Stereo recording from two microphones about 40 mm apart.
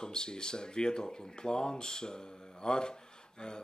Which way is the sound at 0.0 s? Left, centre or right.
Centre.